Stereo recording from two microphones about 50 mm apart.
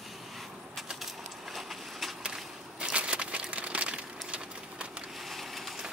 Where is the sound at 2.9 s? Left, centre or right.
Right.